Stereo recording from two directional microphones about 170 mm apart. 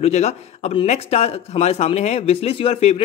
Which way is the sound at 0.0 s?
40° left (ahead or behind).